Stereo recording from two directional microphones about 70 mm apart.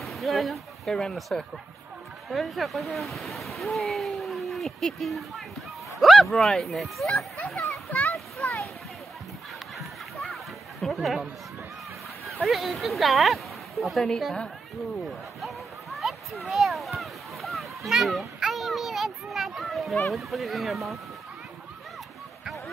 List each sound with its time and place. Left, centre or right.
0.0 s speech: centre
8.4 s a sound: centre
9.8 s chatter: centre
12.4 s speech: centre
15.4 s a sound: centre
20.1 s speech: centre